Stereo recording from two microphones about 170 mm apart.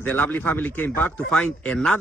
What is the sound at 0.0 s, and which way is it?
Speech, 10° left (ahead or behind).